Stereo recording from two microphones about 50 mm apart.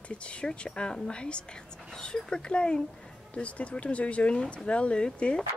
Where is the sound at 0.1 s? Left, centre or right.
Left.